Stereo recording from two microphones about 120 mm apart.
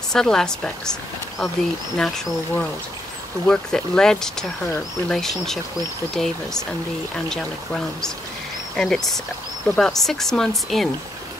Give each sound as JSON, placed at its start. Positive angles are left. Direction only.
{"t": 0.1, "sound": "speech", "side_deg": 5}
{"t": 2.0, "sound": "speech", "side_deg": 5}